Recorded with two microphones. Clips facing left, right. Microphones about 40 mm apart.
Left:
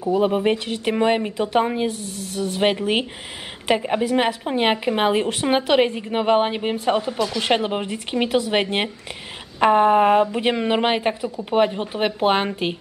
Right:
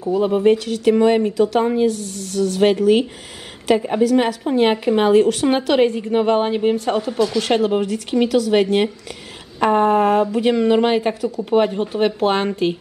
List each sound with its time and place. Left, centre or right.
0.0 s a woman's voice: centre
0.7 s a woman's voice: left; by 7.3 s centre
7.3 s speech: left
11.2 s a woman's voice: centre